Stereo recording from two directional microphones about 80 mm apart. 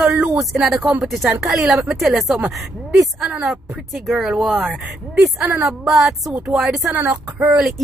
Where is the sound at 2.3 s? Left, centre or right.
Right.